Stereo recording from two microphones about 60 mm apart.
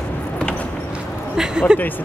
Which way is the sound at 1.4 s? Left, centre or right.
Centre.